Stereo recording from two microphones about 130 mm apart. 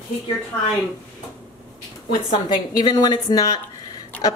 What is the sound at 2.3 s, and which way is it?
Speech, 30° left (ahead or behind).